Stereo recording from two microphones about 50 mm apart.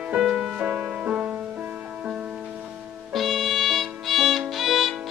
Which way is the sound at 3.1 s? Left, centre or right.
Centre.